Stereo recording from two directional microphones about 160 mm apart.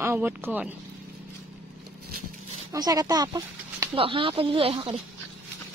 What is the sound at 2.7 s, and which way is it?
Speech, 25° right (ahead or behind).